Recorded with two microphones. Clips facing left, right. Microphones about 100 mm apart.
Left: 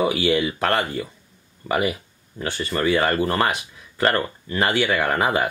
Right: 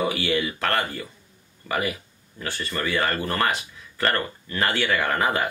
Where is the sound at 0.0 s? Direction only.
20° left (ahead or behind).